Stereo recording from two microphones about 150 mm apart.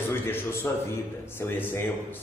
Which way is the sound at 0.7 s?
20° left (ahead or behind).